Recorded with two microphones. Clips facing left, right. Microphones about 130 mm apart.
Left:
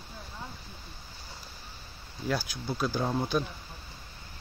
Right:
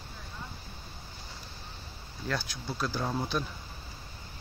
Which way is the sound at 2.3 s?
5° left (ahead or behind).